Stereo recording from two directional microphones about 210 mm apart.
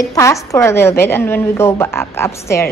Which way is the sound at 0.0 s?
15° left (ahead or behind).